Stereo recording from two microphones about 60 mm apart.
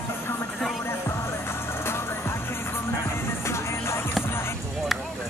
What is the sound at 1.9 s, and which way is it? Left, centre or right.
Music, left.